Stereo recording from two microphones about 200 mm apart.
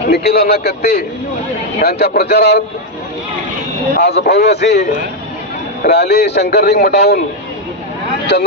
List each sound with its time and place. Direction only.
0.1 s a man's voice: 55° left (ahead or behind)
3.9 s speech: 55° left (ahead or behind)